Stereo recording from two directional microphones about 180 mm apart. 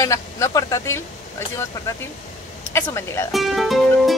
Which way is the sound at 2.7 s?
15° left (ahead or behind).